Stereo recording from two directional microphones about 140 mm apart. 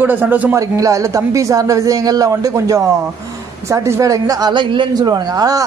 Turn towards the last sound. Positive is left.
turn(degrees=-25)  # may be behind; listen again after turning